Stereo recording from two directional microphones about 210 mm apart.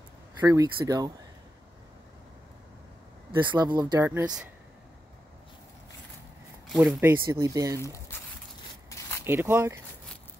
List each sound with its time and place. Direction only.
0.4 s speech: 15° right (ahead or behind)
3.3 s speech: 20° right (ahead or behind); by 4.5 s 5° right (ahead or behind)
6.7 s speech: 5° right (ahead or behind)
7.8 s a sound: 15° left (ahead or behind)
9.2 s speech: 10° right (ahead or behind)